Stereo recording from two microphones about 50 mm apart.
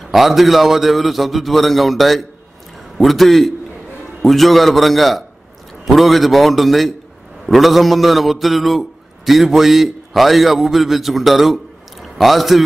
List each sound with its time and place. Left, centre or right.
0.0 s a man's voice: centre